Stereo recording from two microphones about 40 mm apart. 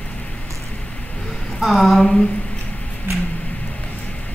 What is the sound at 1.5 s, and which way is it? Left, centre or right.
Speech, centre.